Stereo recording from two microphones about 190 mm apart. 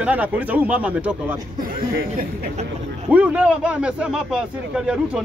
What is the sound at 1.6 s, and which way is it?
Speech, 50° right (ahead or behind).